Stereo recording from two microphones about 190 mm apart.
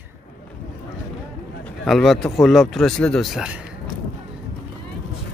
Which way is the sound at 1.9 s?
Centre (ahead or behind).